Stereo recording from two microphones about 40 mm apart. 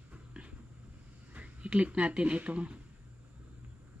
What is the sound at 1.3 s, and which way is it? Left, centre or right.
Speech, right.